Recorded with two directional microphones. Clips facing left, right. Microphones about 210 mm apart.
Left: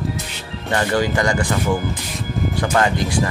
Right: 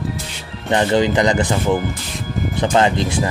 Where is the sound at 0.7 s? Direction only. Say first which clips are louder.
Right 4 dB; 20° right (ahead or behind).